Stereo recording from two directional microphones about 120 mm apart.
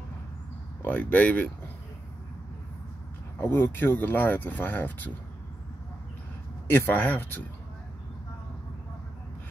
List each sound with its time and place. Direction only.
0.8 s speech: 15° left (ahead or behind)
3.3 s speech: 15° left (ahead or behind)
6.7 s speech: 15° left (ahead or behind)